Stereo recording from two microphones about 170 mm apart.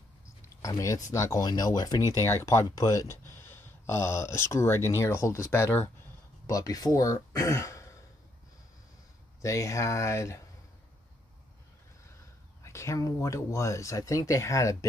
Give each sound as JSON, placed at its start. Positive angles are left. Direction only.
{"t": 0.6, "sound": "speech", "side_deg": 20}
{"t": 9.4, "sound": "speech", "side_deg": 20}
{"t": 12.6, "sound": "speech", "side_deg": 15}